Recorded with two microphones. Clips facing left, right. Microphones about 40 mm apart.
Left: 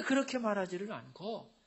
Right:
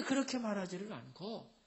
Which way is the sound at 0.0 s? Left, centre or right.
Left.